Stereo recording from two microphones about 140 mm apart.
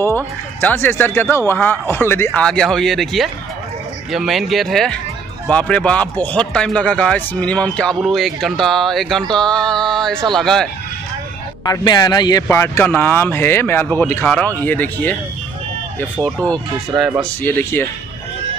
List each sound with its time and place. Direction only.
0.0 s speech: 15° left (ahead or behind)
2.4 s speech: 5° left (ahead or behind)
11.7 s speech: 30° left (ahead or behind)
12.4 s speech: 20° left (ahead or behind)